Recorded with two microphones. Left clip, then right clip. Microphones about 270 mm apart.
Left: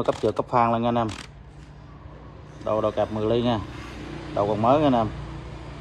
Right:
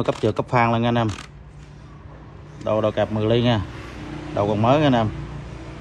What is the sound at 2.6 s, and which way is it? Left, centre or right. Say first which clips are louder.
Speech: right 3 dB; right.